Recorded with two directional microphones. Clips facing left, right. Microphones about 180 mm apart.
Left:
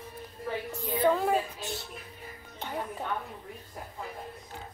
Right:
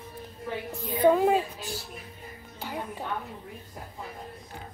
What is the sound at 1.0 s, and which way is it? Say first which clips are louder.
Speech: right 5 dB; 15° right (ahead or behind).